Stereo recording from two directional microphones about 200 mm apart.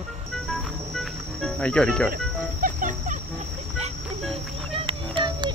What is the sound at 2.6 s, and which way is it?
Music, 40° right (ahead or behind).